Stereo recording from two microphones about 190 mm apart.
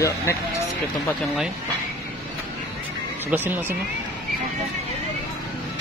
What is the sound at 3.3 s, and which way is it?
Speech, 10° right (ahead or behind).